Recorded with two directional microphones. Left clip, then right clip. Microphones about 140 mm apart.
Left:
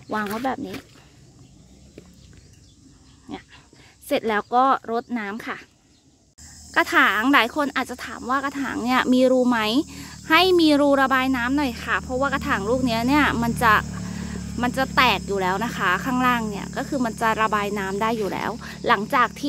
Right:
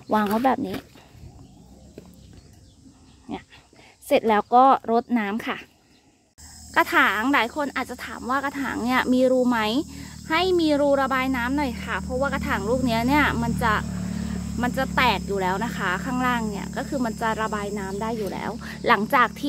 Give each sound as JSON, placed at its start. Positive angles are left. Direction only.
{"t": 0.1, "sound": "speech", "side_deg": -10}
{"t": 4.1, "sound": "speech", "side_deg": 0}
{"t": 6.7, "sound": "speech", "side_deg": 20}
{"t": 14.6, "sound": "speech", "side_deg": 35}
{"t": 18.6, "sound": "speech", "side_deg": 15}